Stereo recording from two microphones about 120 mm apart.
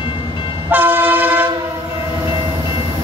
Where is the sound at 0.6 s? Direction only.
15° right (ahead or behind).